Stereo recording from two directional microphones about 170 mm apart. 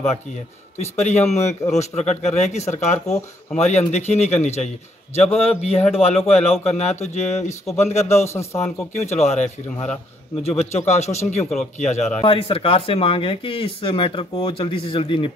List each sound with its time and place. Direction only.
0.7 s a man's voice: 40° left (ahead or behind)